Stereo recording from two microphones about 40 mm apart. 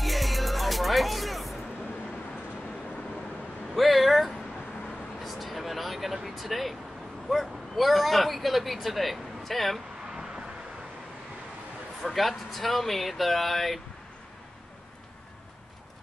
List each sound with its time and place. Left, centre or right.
0.0 s music: centre
3.7 s a sound: centre
5.2 s vehicle: centre
7.2 s speech: centre
10.1 s vehicle: centre
12.0 s speech: centre